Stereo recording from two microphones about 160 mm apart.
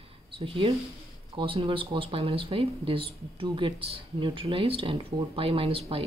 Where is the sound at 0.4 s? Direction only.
35° right (ahead or behind).